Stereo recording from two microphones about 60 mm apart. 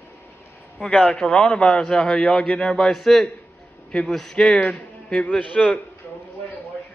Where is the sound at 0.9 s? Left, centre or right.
Left.